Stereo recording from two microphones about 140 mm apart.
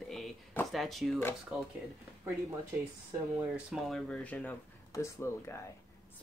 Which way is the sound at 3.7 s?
Centre (ahead or behind).